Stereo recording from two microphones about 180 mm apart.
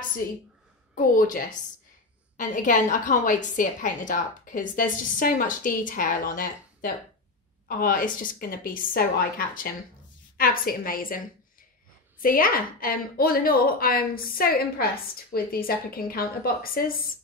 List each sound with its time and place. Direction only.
0.9 s a woman's voice: 50° left (ahead or behind)